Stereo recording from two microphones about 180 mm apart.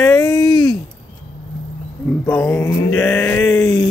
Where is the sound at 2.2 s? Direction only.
15° left (ahead or behind).